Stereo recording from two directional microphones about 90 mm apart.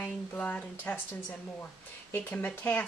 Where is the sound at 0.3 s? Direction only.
15° left (ahead or behind).